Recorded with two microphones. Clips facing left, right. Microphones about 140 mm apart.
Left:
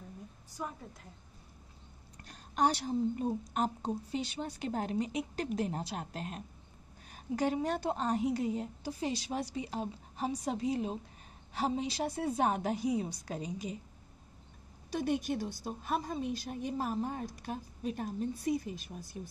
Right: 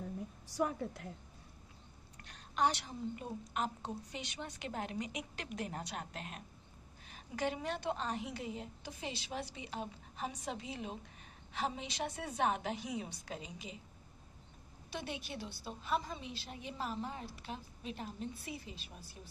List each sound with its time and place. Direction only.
0.5 s a woman's voice: 70° right (ahead or behind)
2.2 s a woman's voice: 40° left (ahead or behind)
14.9 s a woman's voice: 45° left (ahead or behind)